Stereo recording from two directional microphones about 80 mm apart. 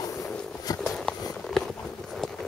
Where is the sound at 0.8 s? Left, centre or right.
Centre.